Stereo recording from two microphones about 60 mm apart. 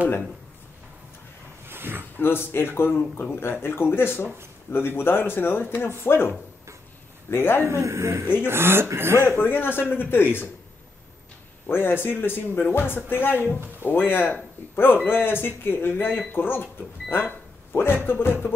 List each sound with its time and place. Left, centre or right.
1.7 s dog: right
2.1 s speech: left
7.6 s speech: right
8.5 s speech: right
9.4 s speech: left
11.6 s speech: left